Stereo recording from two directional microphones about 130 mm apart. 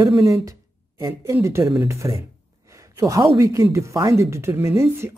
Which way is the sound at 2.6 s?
25° right (ahead or behind).